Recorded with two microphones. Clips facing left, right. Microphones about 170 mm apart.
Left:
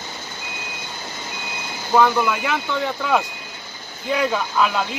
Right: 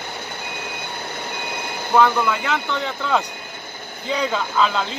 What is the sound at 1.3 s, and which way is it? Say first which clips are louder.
Reversing beeps: right 3 dB; 60° right (ahead or behind).